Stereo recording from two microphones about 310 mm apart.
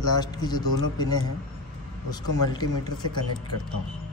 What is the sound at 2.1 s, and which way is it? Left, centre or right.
A man's voice, centre.